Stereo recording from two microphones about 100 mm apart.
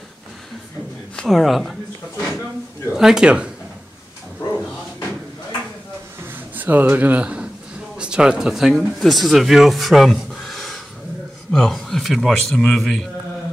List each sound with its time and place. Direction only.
1.1 s speech: 5° left (ahead or behind)
6.5 s a man's voice: 20° right (ahead or behind); by 13.1 s 5° left (ahead or behind)